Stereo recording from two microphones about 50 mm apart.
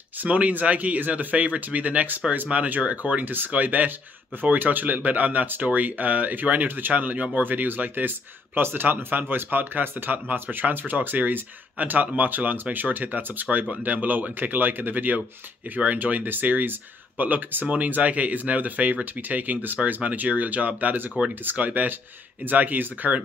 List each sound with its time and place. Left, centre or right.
0.2 s speech: right